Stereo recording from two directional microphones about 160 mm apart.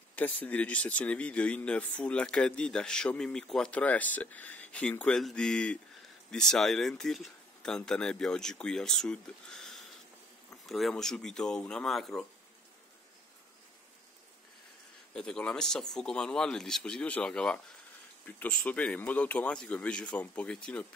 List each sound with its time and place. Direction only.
0.1 s speech: 10° left (ahead or behind)
15.1 s speech: 5° left (ahead or behind)